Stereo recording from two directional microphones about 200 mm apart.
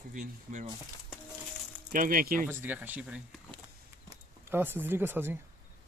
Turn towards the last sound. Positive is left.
turn(degrees=-10)  # may be behind; listen again after turning